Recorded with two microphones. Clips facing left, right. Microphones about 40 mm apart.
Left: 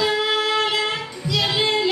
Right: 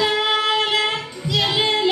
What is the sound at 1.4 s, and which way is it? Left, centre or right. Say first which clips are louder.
Music: right 1 dB; right.